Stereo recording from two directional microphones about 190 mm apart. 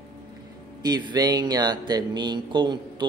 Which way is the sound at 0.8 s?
20° right (ahead or behind).